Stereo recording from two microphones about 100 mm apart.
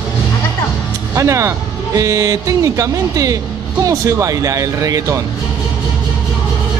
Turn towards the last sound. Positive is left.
turn(degrees=-35)  # may be behind; listen again after turning